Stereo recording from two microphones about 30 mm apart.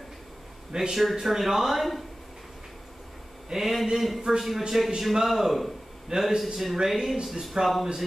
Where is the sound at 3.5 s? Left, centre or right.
Centre.